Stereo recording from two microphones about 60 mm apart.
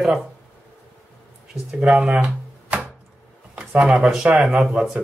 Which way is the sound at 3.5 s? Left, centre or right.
Centre.